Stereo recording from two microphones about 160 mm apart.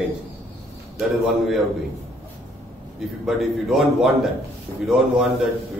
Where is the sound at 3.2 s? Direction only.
Centre (ahead or behind).